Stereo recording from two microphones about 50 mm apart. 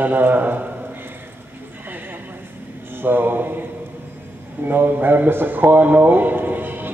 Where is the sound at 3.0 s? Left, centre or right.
Right.